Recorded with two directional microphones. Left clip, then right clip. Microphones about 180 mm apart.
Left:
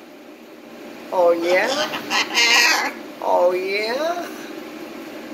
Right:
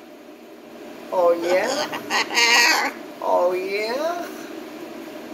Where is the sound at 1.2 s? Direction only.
10° right (ahead or behind).